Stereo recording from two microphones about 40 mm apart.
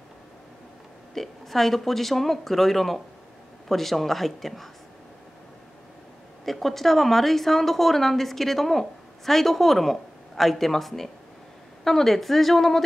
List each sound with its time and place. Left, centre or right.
1.1 s a woman's voice: centre
6.4 s a woman's voice: centre